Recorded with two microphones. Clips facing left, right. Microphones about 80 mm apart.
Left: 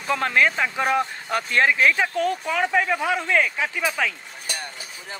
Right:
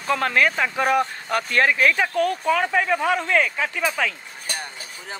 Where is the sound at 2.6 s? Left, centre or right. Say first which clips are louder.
Right 1 dB; centre.